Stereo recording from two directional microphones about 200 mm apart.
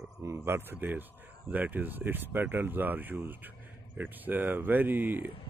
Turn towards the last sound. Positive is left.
turn(degrees=-10)  # may be behind; listen again after turning